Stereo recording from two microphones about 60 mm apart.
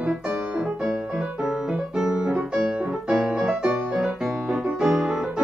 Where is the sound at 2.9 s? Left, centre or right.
Centre.